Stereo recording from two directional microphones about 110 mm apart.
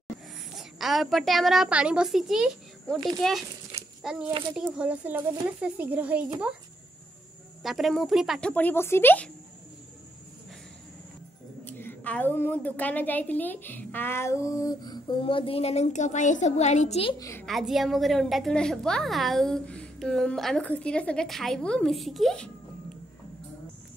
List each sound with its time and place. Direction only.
0.6 s a woman's voice: centre (ahead or behind)
7.6 s a woman's voice: centre (ahead or behind)
8.4 s a woman's voice: 10° left (ahead or behind)
11.6 s a woman's voice: 15° left (ahead or behind); by 15.1 s 40° left (ahead or behind)
15.2 s a woman's voice: 55° left (ahead or behind); by 17.0 s 90° left
17.2 s a woman's voice: 25° left (ahead or behind)
17.5 s a woman's voice: centre (ahead or behind)